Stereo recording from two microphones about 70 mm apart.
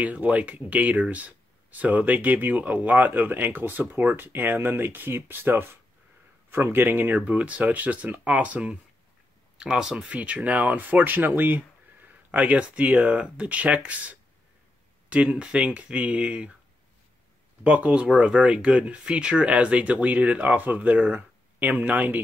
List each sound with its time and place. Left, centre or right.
0.0 s speech: centre
17.6 s speech: right